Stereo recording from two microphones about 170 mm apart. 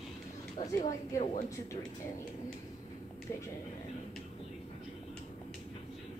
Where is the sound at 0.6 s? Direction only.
50° left (ahead or behind).